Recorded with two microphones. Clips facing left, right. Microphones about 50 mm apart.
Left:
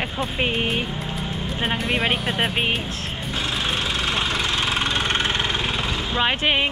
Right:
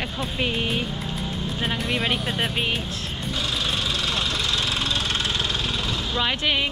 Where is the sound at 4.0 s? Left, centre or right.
Left.